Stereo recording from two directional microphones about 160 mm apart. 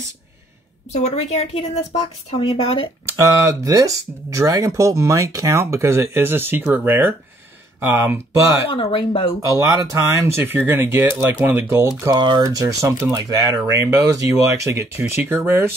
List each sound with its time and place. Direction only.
0.9 s a woman's voice: 45° left (ahead or behind)
3.3 s speech: 20° right (ahead or behind)
8.6 s a woman's voice: 35° left (ahead or behind)
9.4 s speech: 20° right (ahead or behind)